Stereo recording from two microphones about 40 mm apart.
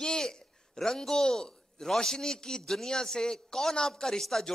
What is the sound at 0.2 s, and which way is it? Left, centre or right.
A man's voice, centre.